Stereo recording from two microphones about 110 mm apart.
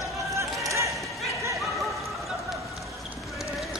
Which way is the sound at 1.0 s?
Centre (ahead or behind).